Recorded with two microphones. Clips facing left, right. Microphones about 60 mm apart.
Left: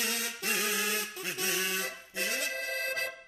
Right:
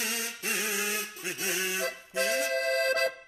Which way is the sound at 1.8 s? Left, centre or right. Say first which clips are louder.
Right 6 dB; right.